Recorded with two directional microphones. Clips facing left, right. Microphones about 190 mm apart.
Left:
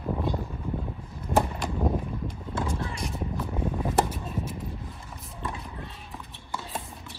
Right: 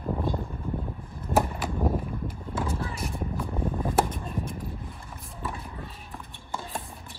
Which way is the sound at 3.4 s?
5° left (ahead or behind).